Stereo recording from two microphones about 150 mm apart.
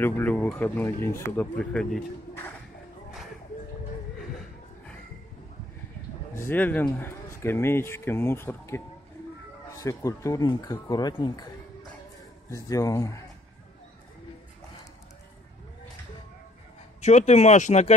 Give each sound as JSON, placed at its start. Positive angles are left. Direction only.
{"t": 0.0, "sound": "speech", "side_deg": 10}
{"t": 6.3, "sound": "speech", "side_deg": 15}
{"t": 12.4, "sound": "speech", "side_deg": 20}
{"t": 17.0, "sound": "speech", "side_deg": 50}